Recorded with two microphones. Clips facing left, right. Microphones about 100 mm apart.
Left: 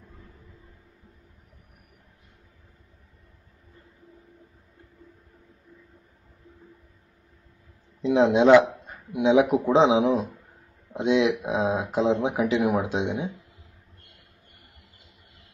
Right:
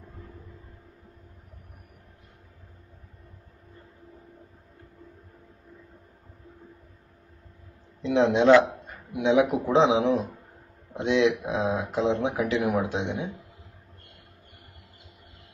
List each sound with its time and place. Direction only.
8.0 s speech: 20° left (ahead or behind)